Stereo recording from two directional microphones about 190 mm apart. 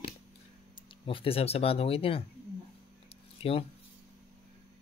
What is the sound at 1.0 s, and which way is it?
Speech, 30° left (ahead or behind).